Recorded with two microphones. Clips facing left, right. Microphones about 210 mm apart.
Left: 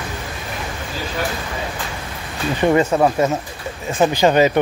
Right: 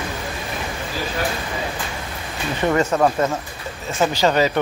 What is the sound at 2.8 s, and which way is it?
Speech, 10° left (ahead or behind).